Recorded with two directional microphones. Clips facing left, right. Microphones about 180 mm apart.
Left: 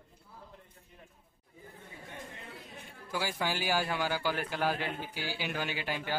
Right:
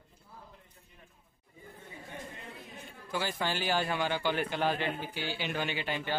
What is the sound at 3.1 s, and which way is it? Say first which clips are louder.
Speech: even; 10° left (ahead or behind).